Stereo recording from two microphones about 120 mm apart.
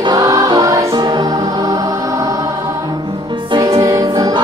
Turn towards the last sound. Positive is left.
turn(degrees=-35)  # may be behind; listen again after turning